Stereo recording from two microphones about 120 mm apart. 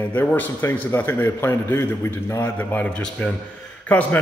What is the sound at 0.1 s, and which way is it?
A man's voice, 15° left (ahead or behind).